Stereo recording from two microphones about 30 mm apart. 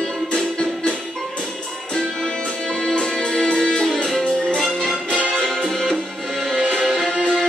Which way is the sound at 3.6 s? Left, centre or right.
Centre.